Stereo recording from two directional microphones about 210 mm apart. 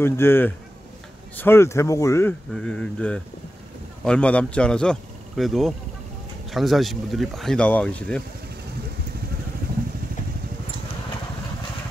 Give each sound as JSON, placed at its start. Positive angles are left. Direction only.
{"t": 0.0, "sound": "a man's voice", "side_deg": 10}